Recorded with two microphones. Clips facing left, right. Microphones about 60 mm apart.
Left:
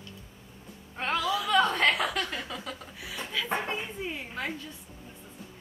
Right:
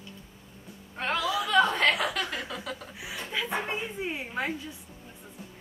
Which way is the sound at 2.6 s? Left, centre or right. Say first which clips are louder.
Right 2 dB; centre.